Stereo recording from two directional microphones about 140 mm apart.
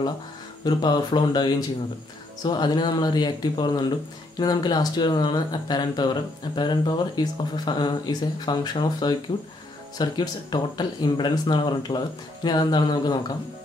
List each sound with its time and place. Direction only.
0.7 s speech: 30° left (ahead or behind)